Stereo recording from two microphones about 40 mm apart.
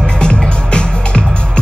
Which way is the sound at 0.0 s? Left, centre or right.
Left.